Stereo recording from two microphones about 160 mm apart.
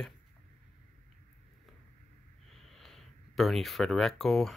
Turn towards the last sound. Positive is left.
turn(degrees=0)  # may be behind; listen again after turning